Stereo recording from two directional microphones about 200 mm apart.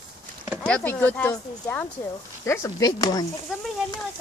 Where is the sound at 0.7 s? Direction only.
5° left (ahead or behind).